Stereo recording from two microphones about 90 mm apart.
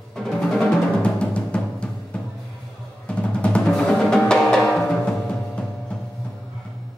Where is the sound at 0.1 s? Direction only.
5° left (ahead or behind).